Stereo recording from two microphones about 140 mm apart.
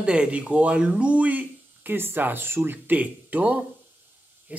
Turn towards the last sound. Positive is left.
turn(degrees=-10)  # may be behind; listen again after turning